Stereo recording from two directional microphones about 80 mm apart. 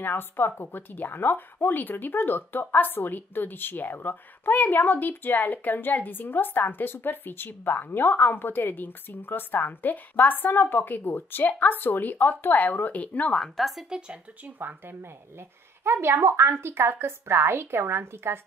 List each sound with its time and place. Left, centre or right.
0.0 s speech: left
13.4 s speech: centre
14.4 s a woman's voice: right